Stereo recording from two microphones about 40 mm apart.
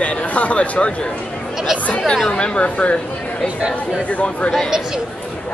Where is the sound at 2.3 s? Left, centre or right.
Left.